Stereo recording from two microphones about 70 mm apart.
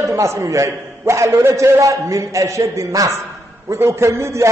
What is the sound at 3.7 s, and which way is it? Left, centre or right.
Speech, right.